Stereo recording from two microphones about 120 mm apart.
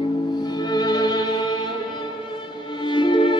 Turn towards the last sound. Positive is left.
turn(degrees=40)  # may be behind; listen again after turning